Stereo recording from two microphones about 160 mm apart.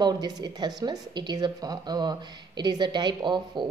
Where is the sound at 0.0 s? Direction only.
25° right (ahead or behind).